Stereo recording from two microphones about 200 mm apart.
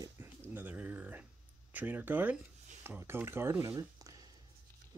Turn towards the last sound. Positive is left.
turn(degrees=-15)  # may be behind; listen again after turning